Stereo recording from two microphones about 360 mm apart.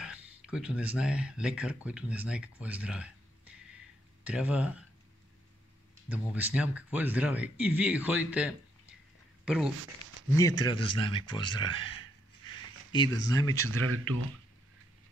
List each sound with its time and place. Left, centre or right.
0.0 s speech: centre
6.0 s speech: centre
10.6 s speech: centre
13.8 s speech: right